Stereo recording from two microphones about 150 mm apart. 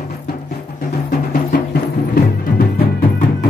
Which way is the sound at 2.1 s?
85° left.